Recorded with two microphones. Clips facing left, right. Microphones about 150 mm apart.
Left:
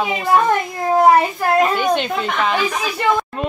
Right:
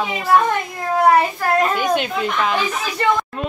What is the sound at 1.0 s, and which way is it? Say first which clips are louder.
Speech: left 1 dB; 20° left (ahead or behind).